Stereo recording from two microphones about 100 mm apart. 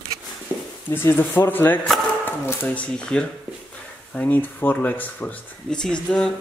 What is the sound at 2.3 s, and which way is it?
Dog, 25° left (ahead or behind).